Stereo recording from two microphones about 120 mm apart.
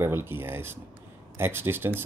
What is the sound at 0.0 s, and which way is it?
Speech, 20° right (ahead or behind).